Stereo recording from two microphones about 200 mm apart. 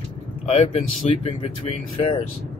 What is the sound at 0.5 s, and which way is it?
Speech, 30° left (ahead or behind).